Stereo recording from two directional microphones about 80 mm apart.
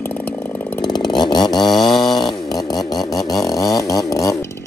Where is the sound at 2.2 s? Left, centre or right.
Left.